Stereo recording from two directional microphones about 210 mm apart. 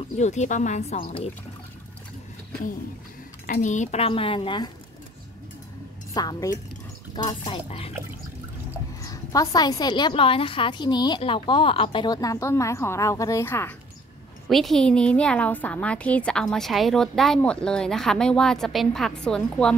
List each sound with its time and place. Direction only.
0.2 s speech: 35° left (ahead or behind)
3.4 s a woman's voice: 35° left (ahead or behind)
6.1 s a woman's voice: 15° left (ahead or behind)
9.0 s a woman's voice: 15° left (ahead or behind)
14.5 s a woman's voice: centre (ahead or behind)